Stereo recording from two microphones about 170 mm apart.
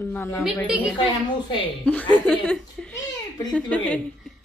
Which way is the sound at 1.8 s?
10° left (ahead or behind).